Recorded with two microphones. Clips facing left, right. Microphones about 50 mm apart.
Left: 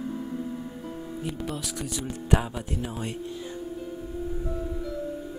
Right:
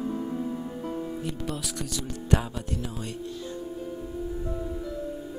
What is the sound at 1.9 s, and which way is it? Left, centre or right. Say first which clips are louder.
Speech: left 1 dB; centre.